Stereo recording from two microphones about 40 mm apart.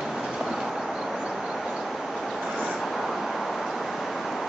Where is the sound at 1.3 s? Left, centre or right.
Centre.